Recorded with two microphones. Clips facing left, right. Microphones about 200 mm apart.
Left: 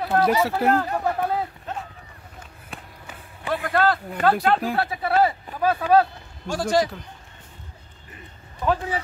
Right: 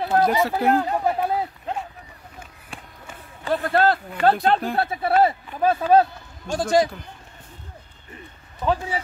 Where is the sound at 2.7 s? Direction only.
Centre (ahead or behind).